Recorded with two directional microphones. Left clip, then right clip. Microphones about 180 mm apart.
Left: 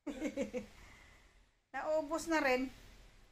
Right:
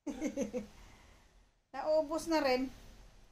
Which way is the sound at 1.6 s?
10° right (ahead or behind).